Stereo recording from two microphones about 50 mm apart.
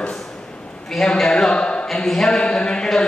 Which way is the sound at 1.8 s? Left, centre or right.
Centre.